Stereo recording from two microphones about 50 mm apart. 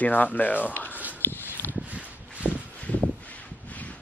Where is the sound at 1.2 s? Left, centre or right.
Left.